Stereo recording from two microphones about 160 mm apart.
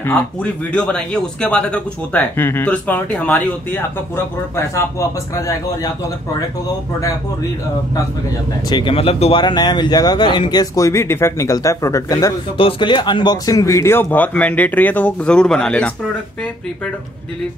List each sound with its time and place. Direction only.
0.0 s speech: 10° left (ahead or behind)
8.6 s speech: 30° left (ahead or behind)
12.5 s speech: 35° left (ahead or behind); by 15.9 s 5° left (ahead or behind)